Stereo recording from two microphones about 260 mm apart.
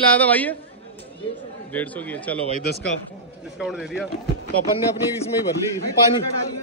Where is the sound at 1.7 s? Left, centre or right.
Centre.